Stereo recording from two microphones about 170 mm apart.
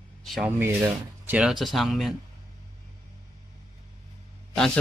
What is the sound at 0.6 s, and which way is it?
Speech, 10° right (ahead or behind).